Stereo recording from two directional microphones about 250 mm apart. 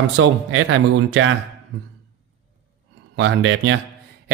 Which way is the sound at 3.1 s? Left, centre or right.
Right.